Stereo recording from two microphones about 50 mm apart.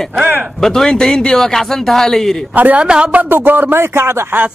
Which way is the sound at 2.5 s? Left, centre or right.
Right.